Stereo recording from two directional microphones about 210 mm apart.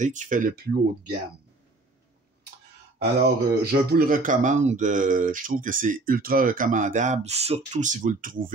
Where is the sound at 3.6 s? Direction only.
50° right (ahead or behind).